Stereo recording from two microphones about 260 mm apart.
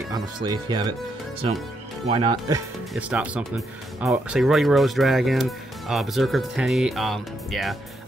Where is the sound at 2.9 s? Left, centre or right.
Centre.